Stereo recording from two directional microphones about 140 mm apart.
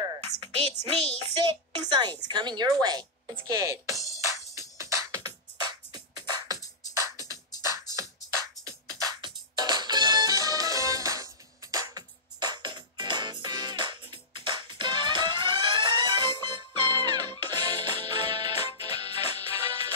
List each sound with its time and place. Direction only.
0.4 s a child's voice: 45° right (ahead or behind)
1.8 s a woman's voice: 30° right (ahead or behind)
3.9 s music: 25° left (ahead or behind)
4.3 s music: 20° right (ahead or behind)